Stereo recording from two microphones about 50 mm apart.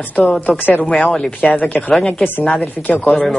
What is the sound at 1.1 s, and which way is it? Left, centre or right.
Speech, centre.